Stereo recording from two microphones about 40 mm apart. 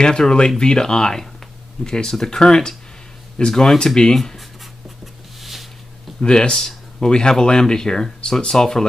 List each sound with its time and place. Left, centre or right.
0.0 s speech: centre
4.2 s speech: centre
5.0 s a sound: centre
6.2 s speech: centre